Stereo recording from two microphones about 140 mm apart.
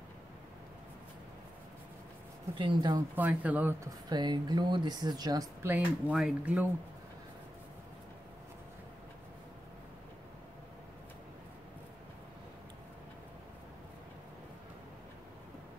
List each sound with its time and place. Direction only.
2.5 s speech: 35° right (ahead or behind)
3.2 s speech: 10° right (ahead or behind)
4.1 s speech: 30° right (ahead or behind)
6.1 s speech: 5° right (ahead or behind)